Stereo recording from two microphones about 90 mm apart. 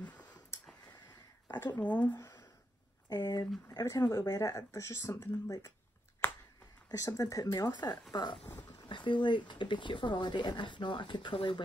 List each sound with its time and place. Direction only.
1.8 s speech: 15° left (ahead or behind)
2.1 s a sound: 35° left (ahead or behind)
3.1 s speech: 50° left (ahead or behind)
3.8 s speech: 35° left (ahead or behind)
6.2 s finger snapping: 20° left (ahead or behind)
6.9 s speech: 40° left (ahead or behind)
8.5 s a sound: 25° left (ahead or behind)
8.7 s speech: 60° left (ahead or behind)